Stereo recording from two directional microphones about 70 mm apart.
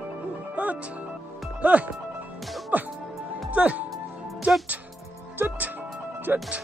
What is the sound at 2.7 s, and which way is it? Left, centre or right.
Music, right.